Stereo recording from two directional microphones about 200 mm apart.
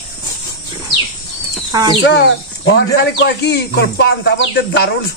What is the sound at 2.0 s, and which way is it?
Speech, 60° left (ahead or behind).